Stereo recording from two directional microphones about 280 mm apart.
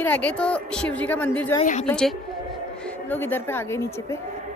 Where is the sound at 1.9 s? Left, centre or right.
Centre.